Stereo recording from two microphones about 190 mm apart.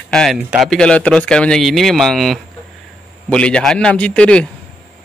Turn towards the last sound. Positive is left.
turn(degrees=5)  # may be behind; listen again after turning